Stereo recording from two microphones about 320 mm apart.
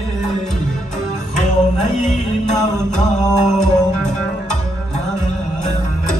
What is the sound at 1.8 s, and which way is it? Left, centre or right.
Music, left.